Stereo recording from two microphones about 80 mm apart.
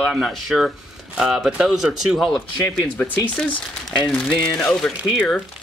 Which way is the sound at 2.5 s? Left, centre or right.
Left.